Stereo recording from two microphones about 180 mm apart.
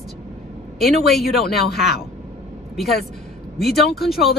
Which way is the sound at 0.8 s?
Centre (ahead or behind).